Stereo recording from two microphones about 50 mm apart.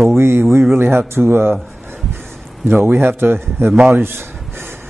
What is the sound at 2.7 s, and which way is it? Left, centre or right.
A man's voice, right.